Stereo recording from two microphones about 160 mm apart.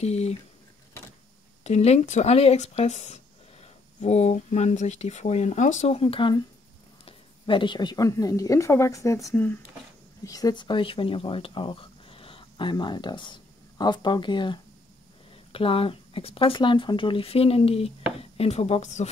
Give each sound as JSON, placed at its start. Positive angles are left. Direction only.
{"t": 0.0, "sound": "speech", "side_deg": 40}
{"t": 1.6, "sound": "speech", "side_deg": 40}